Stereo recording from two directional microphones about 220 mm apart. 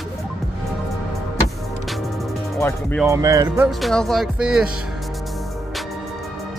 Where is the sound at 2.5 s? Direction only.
10° left (ahead or behind).